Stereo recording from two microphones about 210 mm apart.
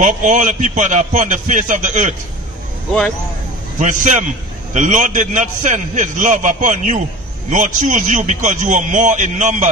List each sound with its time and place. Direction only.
0.0 s a man's voice: 35° right (ahead or behind)
3.8 s a man's voice: 35° right (ahead or behind)